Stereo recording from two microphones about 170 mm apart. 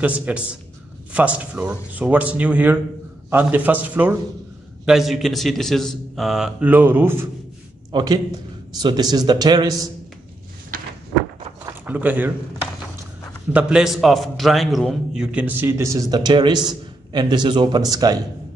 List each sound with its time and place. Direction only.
0.0 s a man's voice: 10° right (ahead or behind)
7.9 s a man's voice: 25° right (ahead or behind)
11.6 s a sound: 10° right (ahead or behind)
13.5 s a man's voice: 5° right (ahead or behind); by 18.2 s 20° right (ahead or behind)